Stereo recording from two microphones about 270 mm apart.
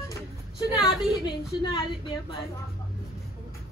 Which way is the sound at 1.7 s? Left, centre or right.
Centre.